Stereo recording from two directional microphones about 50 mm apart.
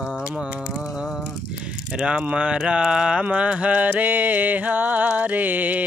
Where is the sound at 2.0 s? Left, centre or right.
Right.